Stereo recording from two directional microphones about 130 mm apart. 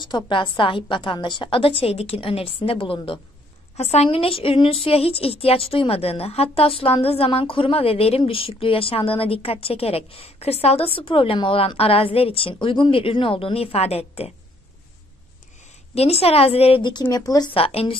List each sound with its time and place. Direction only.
0.0 s a woman's voice: 35° left (ahead or behind)
3.7 s a woman's voice: 55° left (ahead or behind)
15.9 s a woman's voice: 50° left (ahead or behind)
17.1 s speech: 30° left (ahead or behind)
17.6 s a woman's voice: 45° left (ahead or behind)